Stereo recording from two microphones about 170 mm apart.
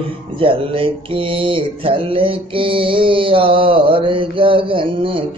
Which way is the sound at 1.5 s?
30° right (ahead or behind).